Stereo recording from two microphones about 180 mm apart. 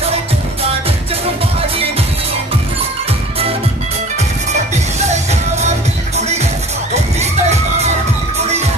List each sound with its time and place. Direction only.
4.9 s music: 40° right (ahead or behind)